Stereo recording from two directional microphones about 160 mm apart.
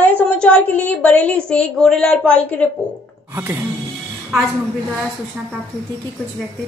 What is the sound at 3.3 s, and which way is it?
Music, 15° right (ahead or behind).